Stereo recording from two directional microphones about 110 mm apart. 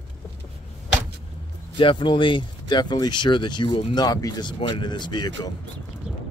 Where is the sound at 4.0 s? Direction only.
35° left (ahead or behind).